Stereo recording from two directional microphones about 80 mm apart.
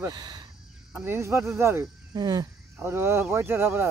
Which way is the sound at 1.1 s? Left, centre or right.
Right.